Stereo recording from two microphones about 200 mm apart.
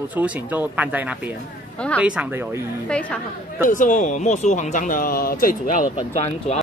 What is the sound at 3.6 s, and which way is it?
Speech, 40° left (ahead or behind).